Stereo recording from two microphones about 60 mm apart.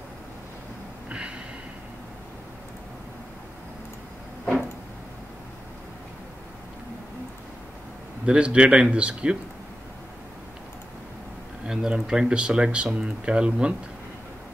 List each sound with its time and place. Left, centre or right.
1.0 s a sound: centre
8.3 s speech: centre
11.6 s speech: centre